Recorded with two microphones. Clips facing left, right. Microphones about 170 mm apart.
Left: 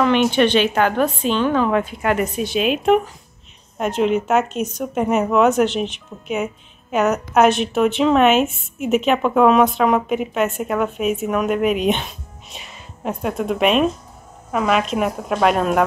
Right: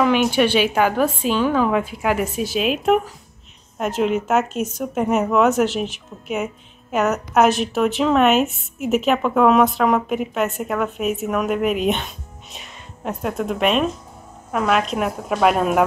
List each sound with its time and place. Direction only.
0.0 s a woman's voice: 5° right (ahead or behind)